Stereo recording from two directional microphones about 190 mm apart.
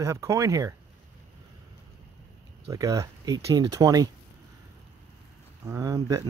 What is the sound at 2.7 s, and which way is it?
Speech, 15° right (ahead or behind).